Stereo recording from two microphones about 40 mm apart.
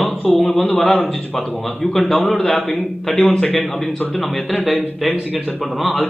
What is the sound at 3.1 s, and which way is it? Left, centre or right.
Speech, left.